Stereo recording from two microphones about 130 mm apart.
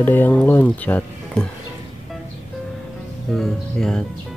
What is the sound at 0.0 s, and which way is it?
Speech, 15° left (ahead or behind).